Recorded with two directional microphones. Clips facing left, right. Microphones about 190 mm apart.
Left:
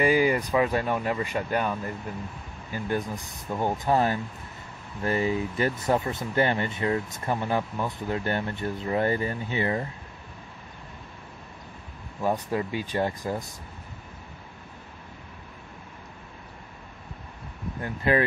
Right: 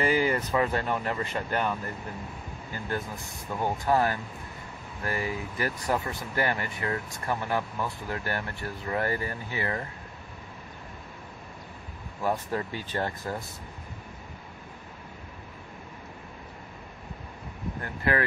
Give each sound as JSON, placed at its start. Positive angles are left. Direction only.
{"t": 0.0, "sound": "speech", "side_deg": 15}
{"t": 12.2, "sound": "speech", "side_deg": 15}
{"t": 17.8, "sound": "speech", "side_deg": 20}